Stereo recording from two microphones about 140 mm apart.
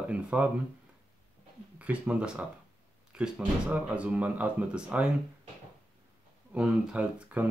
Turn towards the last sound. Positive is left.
turn(degrees=-10)  # may be behind; listen again after turning